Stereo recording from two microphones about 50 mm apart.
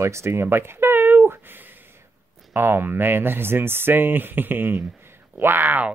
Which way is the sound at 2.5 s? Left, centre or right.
Right.